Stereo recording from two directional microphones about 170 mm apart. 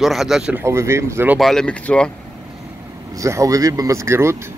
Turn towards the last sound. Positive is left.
turn(degrees=-15)  # may be behind; listen again after turning